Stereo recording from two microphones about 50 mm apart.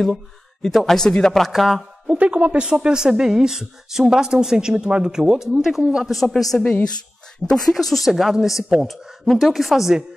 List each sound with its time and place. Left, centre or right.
0.0 s speech: centre
2.1 s speech: right; by 5.8 s centre
5.8 s speech: centre
6.0 s speech: centre